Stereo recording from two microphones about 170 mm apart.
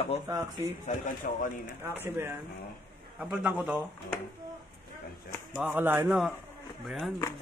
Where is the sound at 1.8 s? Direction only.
10° right (ahead or behind).